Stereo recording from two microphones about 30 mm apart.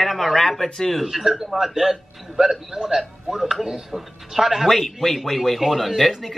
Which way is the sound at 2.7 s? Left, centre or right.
Right.